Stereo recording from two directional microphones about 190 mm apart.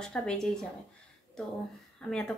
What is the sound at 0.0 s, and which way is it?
Speech, 5° left (ahead or behind).